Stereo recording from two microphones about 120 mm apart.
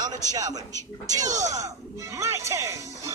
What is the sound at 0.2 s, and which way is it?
A man's voice, 30° right (ahead or behind).